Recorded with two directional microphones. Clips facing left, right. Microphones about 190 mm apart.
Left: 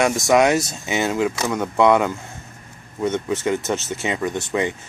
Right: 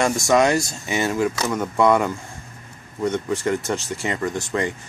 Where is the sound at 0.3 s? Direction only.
20° left (ahead or behind).